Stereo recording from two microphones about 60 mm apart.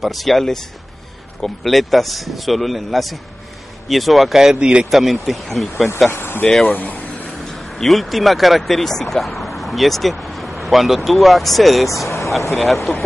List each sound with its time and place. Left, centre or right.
0.0 s speech: centre
4.6 s a man's voice: centre
4.9 s speech: centre
6.1 s speech: left
6.4 s speech: centre
6.7 s a sound: left
7.5 s speech: centre
9.6 s vehicle: centre
11.1 s speech: centre
11.9 s speech: left
12.5 s speech: centre